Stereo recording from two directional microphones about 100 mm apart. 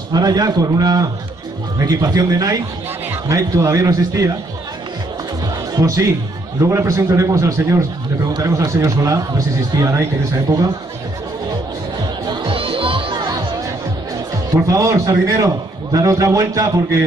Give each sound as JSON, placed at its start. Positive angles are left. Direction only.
{"t": 0.1, "sound": "a man's voice", "side_deg": -40}
{"t": 5.8, "sound": "a man's voice", "side_deg": -35}
{"t": 12.3, "sound": "music", "side_deg": -60}
{"t": 14.5, "sound": "a man's voice", "side_deg": -30}